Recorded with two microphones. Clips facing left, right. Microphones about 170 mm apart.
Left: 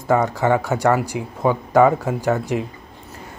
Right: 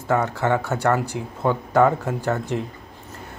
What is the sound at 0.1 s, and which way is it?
Speech, 10° left (ahead or behind).